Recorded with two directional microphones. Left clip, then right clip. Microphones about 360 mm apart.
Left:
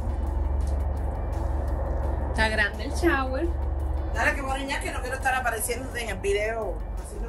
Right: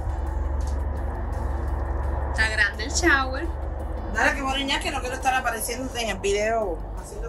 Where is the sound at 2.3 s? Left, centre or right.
Centre.